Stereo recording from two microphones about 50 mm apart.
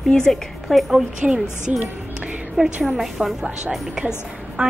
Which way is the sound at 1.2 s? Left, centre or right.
Centre.